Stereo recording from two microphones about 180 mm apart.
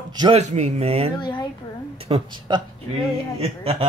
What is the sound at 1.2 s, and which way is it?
Speech, 25° left (ahead or behind).